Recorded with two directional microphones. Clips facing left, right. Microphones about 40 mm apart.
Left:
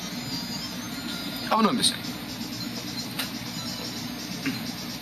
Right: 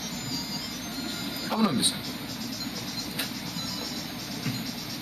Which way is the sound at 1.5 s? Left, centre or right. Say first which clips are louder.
Left 4 dB; left.